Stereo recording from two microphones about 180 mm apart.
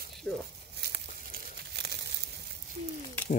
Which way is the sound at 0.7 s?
70° right (ahead or behind).